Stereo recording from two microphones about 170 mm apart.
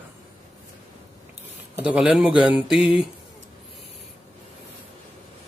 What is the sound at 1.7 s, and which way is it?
Speech, 5° right (ahead or behind).